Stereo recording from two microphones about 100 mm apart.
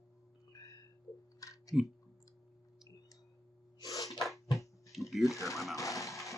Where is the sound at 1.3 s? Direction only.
35° left (ahead or behind).